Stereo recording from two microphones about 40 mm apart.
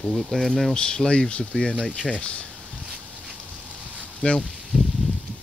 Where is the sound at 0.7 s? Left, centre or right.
Left.